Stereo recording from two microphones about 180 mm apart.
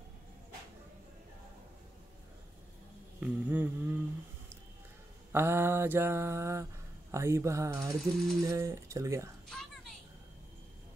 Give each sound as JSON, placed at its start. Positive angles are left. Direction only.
{"t": 3.2, "sound": "humming", "side_deg": -10}
{"t": 5.3, "sound": "mantra", "side_deg": -15}
{"t": 8.0, "sound": "ratchet", "side_deg": 0}
{"t": 8.5, "sound": "mantra", "side_deg": -15}
{"t": 9.5, "sound": "a sound", "side_deg": 0}